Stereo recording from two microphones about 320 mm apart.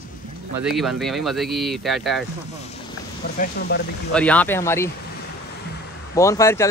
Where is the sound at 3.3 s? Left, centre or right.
Left.